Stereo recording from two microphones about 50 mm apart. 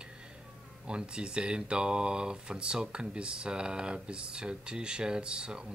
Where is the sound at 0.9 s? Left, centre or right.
Centre.